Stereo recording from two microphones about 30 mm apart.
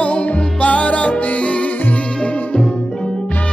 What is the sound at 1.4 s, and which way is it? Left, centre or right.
Music, left.